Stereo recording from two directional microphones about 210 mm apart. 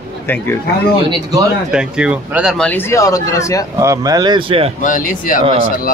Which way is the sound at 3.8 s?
15° right (ahead or behind).